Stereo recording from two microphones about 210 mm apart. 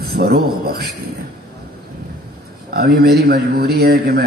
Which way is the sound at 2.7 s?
45° right (ahead or behind).